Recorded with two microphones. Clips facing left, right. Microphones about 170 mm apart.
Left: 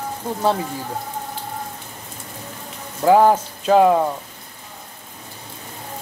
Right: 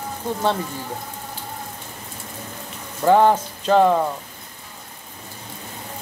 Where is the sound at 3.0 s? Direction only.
5° left (ahead or behind).